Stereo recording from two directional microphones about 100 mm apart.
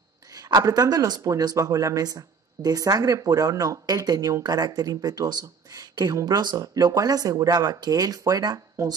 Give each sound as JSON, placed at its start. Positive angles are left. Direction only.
{"t": 0.4, "sound": "speech", "side_deg": -40}